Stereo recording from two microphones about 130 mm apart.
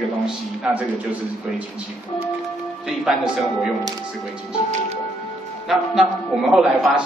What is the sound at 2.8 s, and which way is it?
Speech, 5° right (ahead or behind).